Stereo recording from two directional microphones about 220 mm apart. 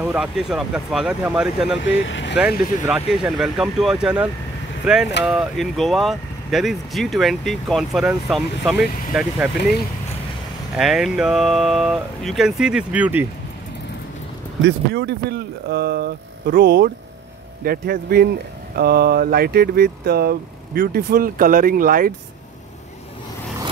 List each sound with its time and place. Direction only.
0.0 s speech: 5° right (ahead or behind)
2.0 s speech: 55° left (ahead or behind)
2.3 s speech: 5° right (ahead or behind)
10.8 s speech: centre (ahead or behind)
14.6 s speech: 50° right (ahead or behind)